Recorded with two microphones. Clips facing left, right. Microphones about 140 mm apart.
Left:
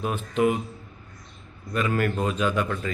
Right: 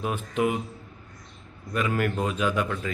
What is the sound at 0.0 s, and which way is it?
Speech, 10° right (ahead or behind).